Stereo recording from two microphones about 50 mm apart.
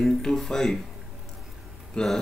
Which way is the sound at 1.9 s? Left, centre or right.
Centre.